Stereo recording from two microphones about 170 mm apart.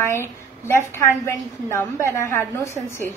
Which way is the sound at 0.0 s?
15° left (ahead or behind).